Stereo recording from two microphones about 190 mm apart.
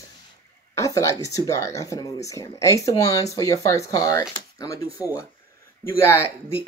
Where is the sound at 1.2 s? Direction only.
15° left (ahead or behind).